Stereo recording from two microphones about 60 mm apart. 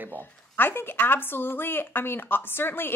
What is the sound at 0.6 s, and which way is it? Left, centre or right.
A woman's voice, left.